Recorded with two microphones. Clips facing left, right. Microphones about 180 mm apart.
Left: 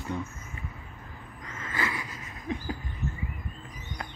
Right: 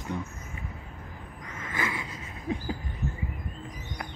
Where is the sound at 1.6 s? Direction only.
20° right (ahead or behind).